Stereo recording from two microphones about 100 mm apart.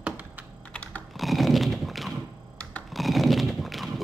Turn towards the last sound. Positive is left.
turn(degrees=0)  # may be behind; listen again after turning